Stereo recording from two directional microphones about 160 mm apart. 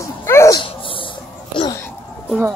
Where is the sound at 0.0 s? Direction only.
15° left (ahead or behind).